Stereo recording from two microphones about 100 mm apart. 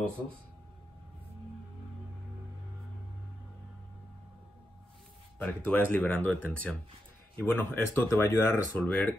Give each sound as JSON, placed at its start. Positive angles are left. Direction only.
{"t": 5.4, "sound": "speech", "side_deg": 15}
{"t": 8.7, "sound": "speech", "side_deg": 15}